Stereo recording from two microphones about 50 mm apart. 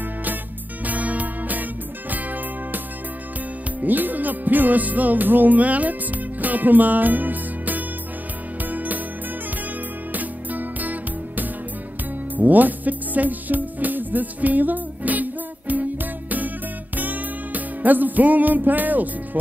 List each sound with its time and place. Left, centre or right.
0.8 s music: right
3.8 s music: right
10.1 s music: right